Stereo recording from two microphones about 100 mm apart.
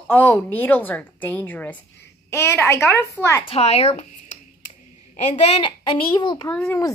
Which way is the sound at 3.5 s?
90° left.